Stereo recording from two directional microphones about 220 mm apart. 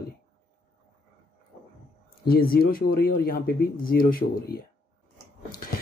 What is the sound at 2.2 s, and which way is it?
Speech, 40° left (ahead or behind).